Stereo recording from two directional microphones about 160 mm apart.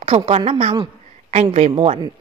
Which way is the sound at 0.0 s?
35° right (ahead or behind).